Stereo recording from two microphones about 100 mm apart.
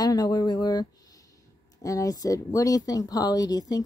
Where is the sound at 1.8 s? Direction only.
35° left (ahead or behind).